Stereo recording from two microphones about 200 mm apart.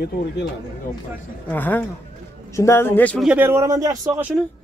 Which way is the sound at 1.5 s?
10° left (ahead or behind).